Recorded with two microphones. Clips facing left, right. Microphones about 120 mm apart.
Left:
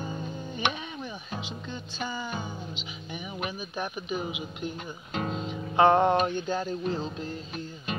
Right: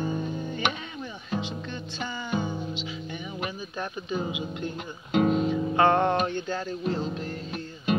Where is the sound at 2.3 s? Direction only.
15° right (ahead or behind).